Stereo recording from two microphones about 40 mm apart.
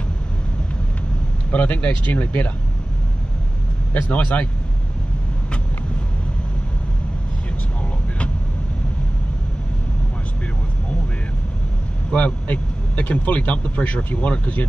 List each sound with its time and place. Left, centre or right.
1.5 s speech: left
3.9 s speech: left
12.1 s speech: left
12.4 s speech: left